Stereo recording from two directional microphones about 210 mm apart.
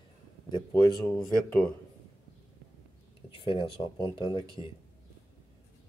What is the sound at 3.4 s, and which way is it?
Speech, 25° left (ahead or behind).